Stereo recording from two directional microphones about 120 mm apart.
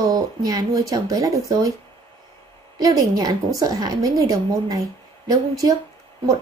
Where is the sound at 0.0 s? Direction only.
30° right (ahead or behind).